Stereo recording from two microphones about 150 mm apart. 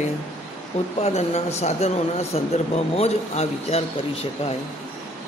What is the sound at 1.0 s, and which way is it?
Speech, 45° left (ahead or behind).